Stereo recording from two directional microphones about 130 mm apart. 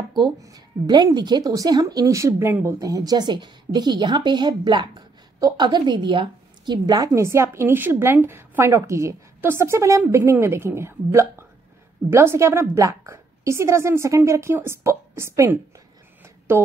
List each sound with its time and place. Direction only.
0.1 s a woman's voice: 30° right (ahead or behind)
7.2 s a woman's voice: 20° right (ahead or behind)